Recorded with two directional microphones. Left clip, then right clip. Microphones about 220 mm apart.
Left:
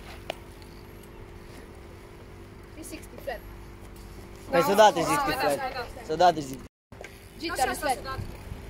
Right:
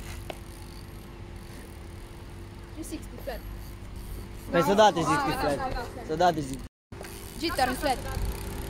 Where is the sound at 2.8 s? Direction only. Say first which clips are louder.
Even; 10° right (ahead or behind).